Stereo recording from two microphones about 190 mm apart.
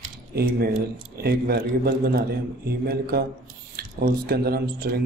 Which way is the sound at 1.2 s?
55° right (ahead or behind).